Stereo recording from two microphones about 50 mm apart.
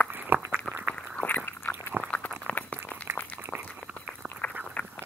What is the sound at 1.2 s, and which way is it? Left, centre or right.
Chewing, left.